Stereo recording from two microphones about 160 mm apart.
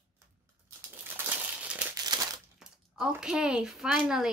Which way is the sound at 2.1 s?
25° right (ahead or behind).